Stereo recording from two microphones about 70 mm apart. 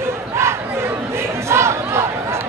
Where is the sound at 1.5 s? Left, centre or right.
Right.